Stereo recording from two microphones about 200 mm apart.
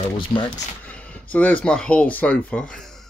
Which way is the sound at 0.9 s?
5° left (ahead or behind).